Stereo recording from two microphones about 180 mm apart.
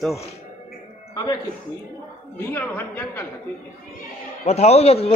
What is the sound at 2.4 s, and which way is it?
Speech, 10° left (ahead or behind).